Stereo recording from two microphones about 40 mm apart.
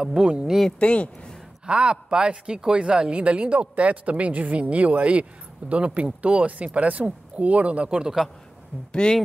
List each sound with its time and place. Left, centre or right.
0.0 s a woman's voice: right
0.7 s speech: left
1.7 s a woman's voice: right
8.9 s speech: left